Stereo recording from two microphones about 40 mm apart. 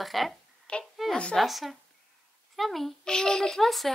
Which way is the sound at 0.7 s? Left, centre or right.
Left.